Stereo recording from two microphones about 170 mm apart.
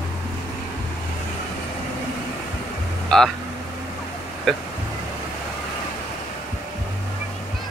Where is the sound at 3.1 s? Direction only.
5° left (ahead or behind).